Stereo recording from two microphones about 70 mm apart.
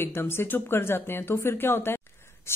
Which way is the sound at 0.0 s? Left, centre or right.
Left.